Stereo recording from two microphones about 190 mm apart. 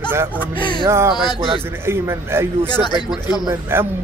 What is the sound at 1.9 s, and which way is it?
Speech, 15° right (ahead or behind).